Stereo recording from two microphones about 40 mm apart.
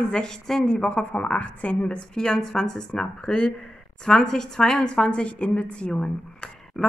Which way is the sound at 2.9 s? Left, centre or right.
Left.